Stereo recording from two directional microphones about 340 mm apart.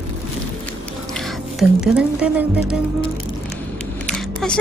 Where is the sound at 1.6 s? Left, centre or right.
Centre.